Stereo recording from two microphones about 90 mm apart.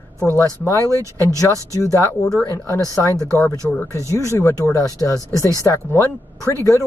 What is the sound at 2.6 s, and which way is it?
Speech, 35° left (ahead or behind).